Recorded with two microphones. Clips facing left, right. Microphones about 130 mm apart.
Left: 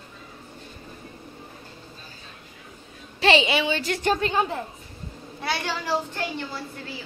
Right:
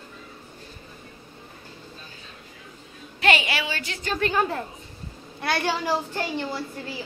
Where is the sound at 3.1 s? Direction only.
25° left (ahead or behind).